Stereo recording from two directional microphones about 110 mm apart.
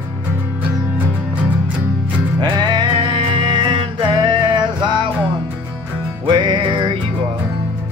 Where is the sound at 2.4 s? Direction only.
40° right (ahead or behind).